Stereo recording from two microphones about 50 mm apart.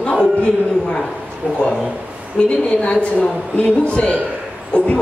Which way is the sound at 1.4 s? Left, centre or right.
Centre.